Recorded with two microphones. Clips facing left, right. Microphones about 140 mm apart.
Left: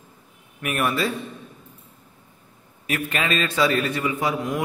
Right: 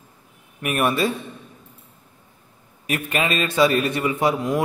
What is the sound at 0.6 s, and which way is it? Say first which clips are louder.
Speech: right 3 dB; 20° right (ahead or behind).